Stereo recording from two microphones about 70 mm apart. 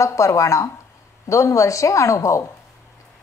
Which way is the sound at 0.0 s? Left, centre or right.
Left.